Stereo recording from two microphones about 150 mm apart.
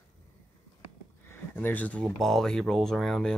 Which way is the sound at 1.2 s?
15° left (ahead or behind).